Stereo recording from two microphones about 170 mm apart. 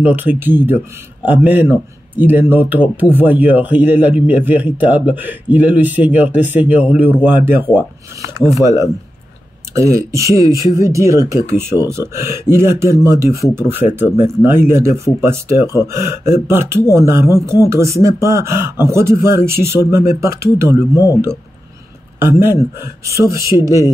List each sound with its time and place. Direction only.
0.0 s speech: 10° right (ahead or behind)
9.8 s speech: 20° right (ahead or behind)
20.9 s a man's voice: 20° left (ahead or behind)
22.4 s speech: 15° right (ahead or behind)